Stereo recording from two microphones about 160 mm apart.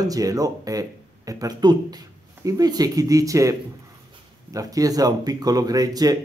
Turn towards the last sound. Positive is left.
turn(degrees=-25)  # may be behind; listen again after turning